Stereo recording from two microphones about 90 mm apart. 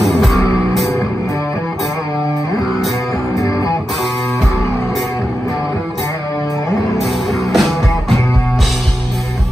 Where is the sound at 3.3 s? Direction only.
35° left (ahead or behind).